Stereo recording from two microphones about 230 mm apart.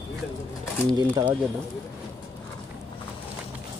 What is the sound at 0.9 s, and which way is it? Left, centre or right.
Speech, centre.